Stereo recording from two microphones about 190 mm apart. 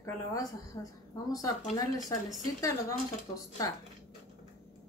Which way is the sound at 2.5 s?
20° left (ahead or behind).